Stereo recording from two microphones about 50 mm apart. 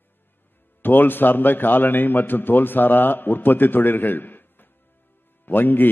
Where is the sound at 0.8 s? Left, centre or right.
Left.